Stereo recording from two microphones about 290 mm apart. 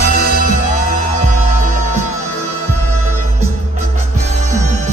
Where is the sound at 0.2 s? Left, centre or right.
Right.